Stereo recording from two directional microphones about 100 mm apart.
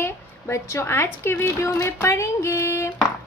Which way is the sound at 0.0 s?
30° left (ahead or behind).